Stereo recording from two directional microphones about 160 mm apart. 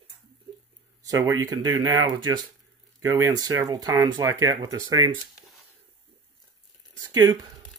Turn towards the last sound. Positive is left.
turn(degrees=-25)  # may be behind; listen again after turning